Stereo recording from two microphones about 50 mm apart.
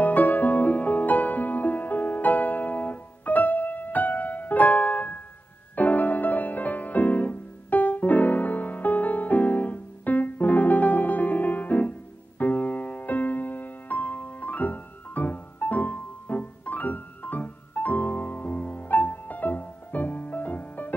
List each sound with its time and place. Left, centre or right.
0.0 s music: left